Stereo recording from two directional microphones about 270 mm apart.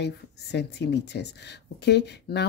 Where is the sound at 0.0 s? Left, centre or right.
Left.